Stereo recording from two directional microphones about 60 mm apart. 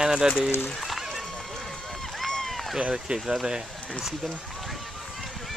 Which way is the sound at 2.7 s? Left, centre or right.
Centre.